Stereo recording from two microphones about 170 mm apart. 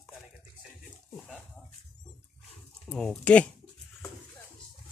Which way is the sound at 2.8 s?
5° left (ahead or behind).